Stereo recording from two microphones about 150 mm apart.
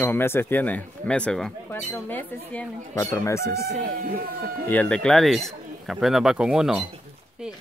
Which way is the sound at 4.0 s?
75° right (ahead or behind).